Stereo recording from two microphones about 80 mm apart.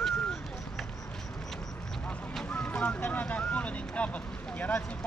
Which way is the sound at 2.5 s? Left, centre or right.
Centre.